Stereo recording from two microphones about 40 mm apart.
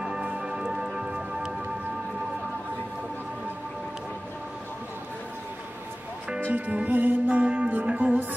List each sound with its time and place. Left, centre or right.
0.0 s music: right
6.5 s music: right